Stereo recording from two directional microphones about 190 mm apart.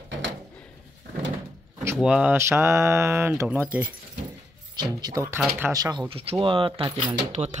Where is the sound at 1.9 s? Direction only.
5° right (ahead or behind); by 7.1 s 25° right (ahead or behind).